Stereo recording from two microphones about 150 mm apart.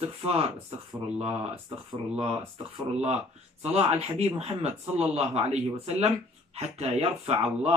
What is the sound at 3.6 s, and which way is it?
Speech, 45° right (ahead or behind).